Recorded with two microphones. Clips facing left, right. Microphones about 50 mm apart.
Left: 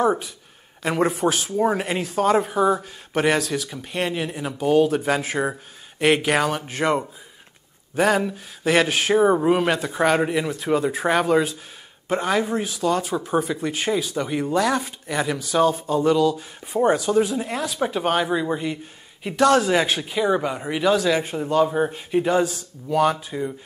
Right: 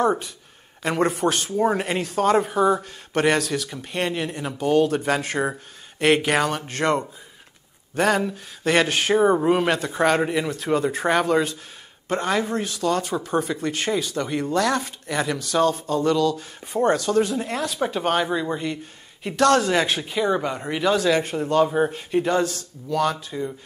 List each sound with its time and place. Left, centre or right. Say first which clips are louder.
0.0 s speech: left 1 dB; centre